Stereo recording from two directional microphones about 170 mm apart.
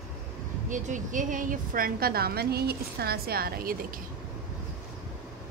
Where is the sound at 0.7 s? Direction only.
50° right (ahead or behind).